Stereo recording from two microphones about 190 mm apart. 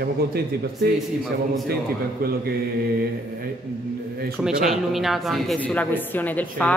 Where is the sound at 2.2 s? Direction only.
50° right (ahead or behind).